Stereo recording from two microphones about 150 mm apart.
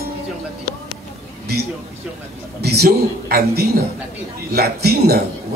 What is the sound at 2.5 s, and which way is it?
A man's voice, 90° right.